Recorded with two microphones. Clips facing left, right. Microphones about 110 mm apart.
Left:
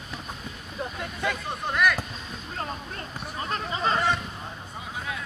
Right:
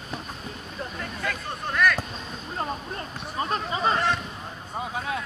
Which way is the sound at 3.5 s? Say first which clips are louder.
Right 1 dB; 15° right (ahead or behind).